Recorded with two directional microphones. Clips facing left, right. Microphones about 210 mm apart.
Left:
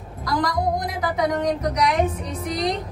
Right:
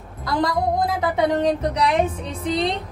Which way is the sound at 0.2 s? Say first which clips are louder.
Right 1 dB; 25° right (ahead or behind).